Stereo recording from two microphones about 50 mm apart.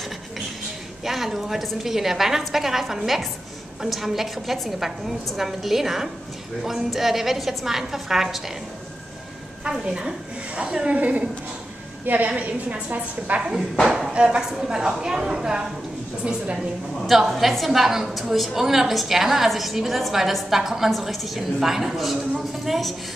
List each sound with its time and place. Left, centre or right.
1.0 s a woman's voice: centre
9.7 s a woman's voice: centre
12.3 s a woman's voice: right
13.4 s a woman's voice: centre
14.1 s a woman's voice: right
17.0 s a woman's voice: centre